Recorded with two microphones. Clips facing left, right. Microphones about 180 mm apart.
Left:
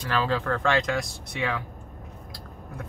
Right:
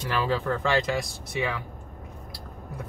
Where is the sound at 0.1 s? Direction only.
10° right (ahead or behind).